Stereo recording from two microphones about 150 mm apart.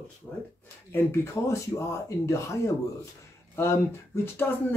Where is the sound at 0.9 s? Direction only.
20° left (ahead or behind).